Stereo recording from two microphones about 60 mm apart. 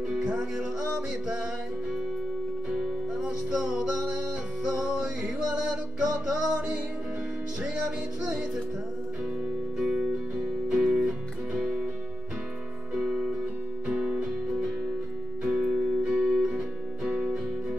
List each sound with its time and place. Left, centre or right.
0.1 s music: centre
2.7 s music: centre
9.8 s music: centre
12.9 s music: centre